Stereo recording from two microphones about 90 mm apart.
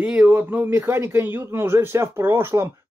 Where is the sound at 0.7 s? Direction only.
30° right (ahead or behind).